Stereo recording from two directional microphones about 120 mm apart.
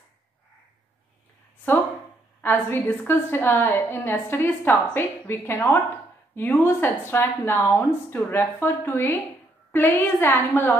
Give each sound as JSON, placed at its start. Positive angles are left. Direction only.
{"t": 2.4, "sound": "a woman's voice", "side_deg": 15}